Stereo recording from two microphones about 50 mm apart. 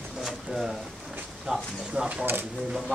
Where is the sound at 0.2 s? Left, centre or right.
Centre.